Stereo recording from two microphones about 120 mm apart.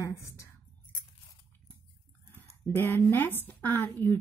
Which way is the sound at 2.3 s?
15° left (ahead or behind).